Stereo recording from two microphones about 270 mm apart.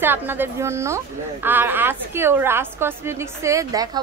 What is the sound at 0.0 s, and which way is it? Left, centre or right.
A woman's voice, centre.